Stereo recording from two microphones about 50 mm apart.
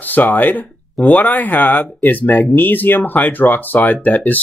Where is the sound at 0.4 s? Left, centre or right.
Left.